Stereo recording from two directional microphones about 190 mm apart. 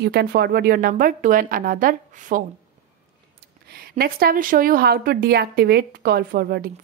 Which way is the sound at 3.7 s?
55° right (ahead or behind).